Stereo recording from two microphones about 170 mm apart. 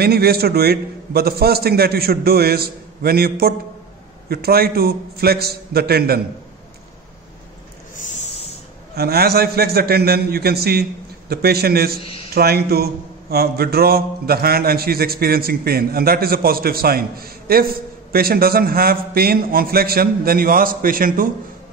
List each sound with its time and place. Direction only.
0.0 s a man's voice: 65° right (ahead or behind)
7.9 s a sound: 45° left (ahead or behind)
8.9 s a man's voice: 65° right (ahead or behind)